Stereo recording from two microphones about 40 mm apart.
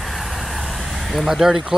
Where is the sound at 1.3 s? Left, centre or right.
Centre.